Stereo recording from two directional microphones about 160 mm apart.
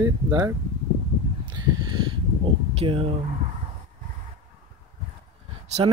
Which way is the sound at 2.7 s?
35° right (ahead or behind).